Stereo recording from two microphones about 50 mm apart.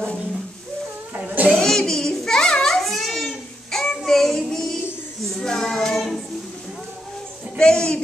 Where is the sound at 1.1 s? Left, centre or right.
Right.